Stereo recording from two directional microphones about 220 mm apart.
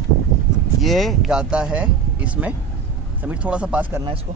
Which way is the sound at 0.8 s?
Centre (ahead or behind).